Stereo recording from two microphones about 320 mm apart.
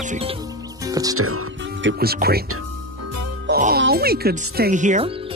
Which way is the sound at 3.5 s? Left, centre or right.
Right.